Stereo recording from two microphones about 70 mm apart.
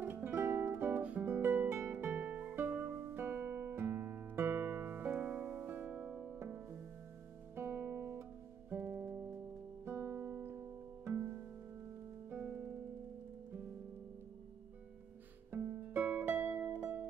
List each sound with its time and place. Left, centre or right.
0.0 s music: right
1.2 s guitar: right
1.8 s music: right
5.9 s music: centre
7.5 s music: right
9.0 s music: right
9.8 s guitar: right
11.1 s harp: right
15.8 s music: right